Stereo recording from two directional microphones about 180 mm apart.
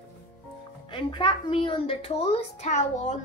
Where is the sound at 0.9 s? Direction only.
25° left (ahead or behind).